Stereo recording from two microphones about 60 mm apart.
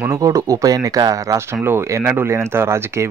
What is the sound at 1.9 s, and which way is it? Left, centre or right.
Speech, right.